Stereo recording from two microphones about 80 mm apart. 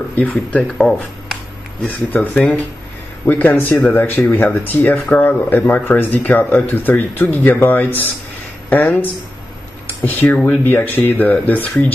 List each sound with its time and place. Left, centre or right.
0.1 s speech: centre
0.7 s speech: centre; by 11.9 s left